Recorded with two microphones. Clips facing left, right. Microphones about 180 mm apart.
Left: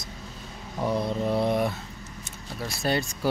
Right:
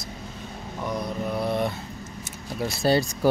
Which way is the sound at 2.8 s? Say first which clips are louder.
Right 5 dB; 30° right (ahead or behind).